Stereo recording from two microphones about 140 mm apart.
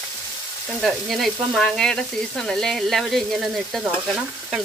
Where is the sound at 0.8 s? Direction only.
Centre (ahead or behind).